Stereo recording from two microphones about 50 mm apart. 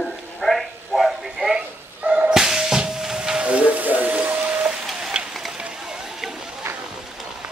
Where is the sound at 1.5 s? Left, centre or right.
Right.